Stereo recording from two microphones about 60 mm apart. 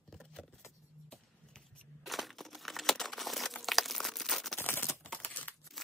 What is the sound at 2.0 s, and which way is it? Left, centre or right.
Crumpling, centre.